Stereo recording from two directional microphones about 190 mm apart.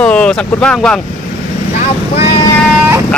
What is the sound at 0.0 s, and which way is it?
Speech, 5° left (ahead or behind).